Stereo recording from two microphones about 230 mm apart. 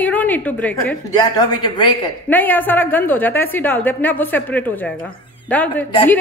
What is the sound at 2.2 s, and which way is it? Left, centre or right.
A woman's voice, centre.